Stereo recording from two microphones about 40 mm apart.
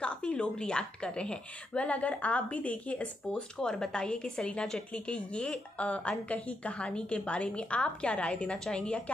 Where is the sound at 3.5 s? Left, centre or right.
Centre.